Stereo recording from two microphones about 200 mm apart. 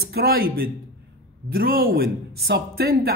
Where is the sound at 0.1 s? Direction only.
50° right (ahead or behind).